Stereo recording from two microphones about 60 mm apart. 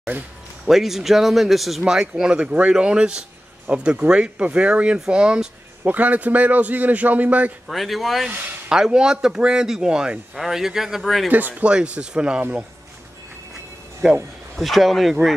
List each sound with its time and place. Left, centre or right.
0.7 s speech: centre
5.9 s a man's voice: right
7.6 s speech: centre
8.6 s speech: centre
11.2 s a man's voice: right
11.7 s speech: centre
14.6 s speech: centre